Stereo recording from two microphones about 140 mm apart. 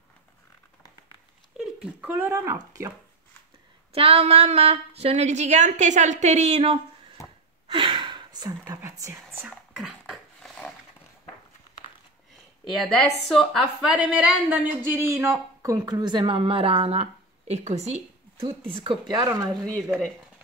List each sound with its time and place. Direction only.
1.6 s speech: 5° right (ahead or behind)
3.9 s a woman's voice: 45° right (ahead or behind)
7.6 s a sound: 35° right (ahead or behind); by 9.5 s 20° right (ahead or behind)
9.5 s a sound: centre (ahead or behind)
12.7 s a woman's voice: centre (ahead or behind); by 18.5 s 50° right (ahead or behind)
18.8 s a woman's voice: 35° right (ahead or behind)